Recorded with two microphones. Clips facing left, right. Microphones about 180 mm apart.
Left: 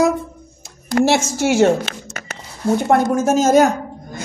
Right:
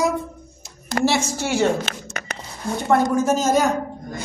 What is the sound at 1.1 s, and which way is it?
Speech, 45° left (ahead or behind).